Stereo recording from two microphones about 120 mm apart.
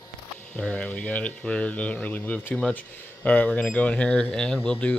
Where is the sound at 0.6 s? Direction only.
10° left (ahead or behind).